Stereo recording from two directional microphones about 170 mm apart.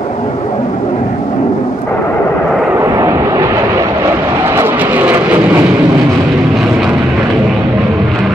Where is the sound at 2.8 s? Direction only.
15° right (ahead or behind).